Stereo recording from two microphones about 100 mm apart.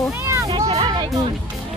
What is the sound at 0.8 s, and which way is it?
Speech, 50° right (ahead or behind).